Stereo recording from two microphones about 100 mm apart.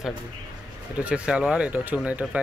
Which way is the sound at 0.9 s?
10° right (ahead or behind).